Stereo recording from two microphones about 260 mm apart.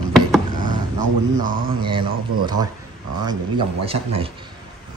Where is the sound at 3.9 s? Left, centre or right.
Right.